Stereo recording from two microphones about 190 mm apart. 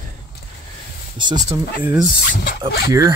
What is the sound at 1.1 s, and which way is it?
Speech, 20° right (ahead or behind).